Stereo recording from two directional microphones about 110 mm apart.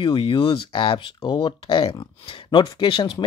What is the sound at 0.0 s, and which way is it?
Speech, 50° left (ahead or behind).